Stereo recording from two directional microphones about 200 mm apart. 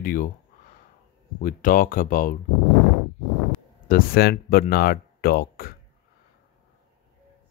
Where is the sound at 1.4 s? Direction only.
45° left (ahead or behind).